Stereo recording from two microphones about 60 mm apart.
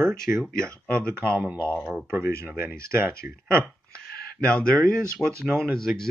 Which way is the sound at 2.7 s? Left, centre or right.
Right.